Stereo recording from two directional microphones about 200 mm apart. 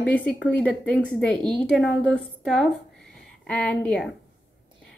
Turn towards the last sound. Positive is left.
turn(degrees=5)  # may be behind; listen again after turning